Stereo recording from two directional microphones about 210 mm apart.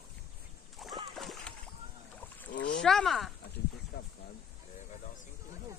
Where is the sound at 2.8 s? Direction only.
Centre (ahead or behind).